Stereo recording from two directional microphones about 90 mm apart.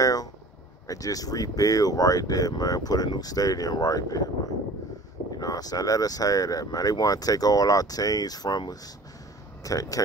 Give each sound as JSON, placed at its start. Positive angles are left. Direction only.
{"t": 0.0, "sound": "a sound", "side_deg": 40}
{"t": 0.8, "sound": "speech", "side_deg": 40}
{"t": 5.4, "sound": "speech", "side_deg": 45}